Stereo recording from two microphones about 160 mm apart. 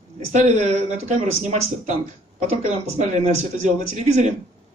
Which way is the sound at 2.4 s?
45° right (ahead or behind).